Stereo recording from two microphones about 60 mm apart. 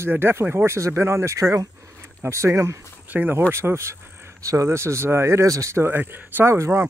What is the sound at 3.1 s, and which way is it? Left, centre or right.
Speech, right.